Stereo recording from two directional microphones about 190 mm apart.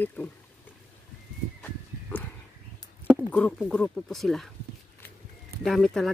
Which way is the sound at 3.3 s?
5° left (ahead or behind).